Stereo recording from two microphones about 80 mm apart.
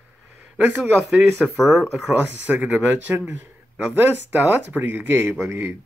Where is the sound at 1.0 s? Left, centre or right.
Centre.